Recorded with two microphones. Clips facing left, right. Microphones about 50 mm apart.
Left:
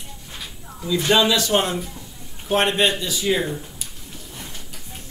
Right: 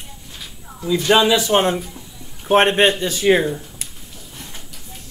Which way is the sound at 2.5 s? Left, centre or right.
Right.